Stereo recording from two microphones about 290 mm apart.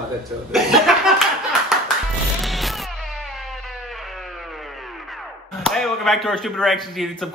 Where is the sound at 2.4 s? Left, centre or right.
Centre.